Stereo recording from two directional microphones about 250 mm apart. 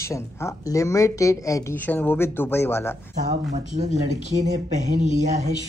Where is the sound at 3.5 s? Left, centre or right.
Right.